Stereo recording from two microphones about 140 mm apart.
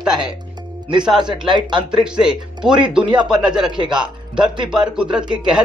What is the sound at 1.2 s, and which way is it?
Speech, 35° right (ahead or behind).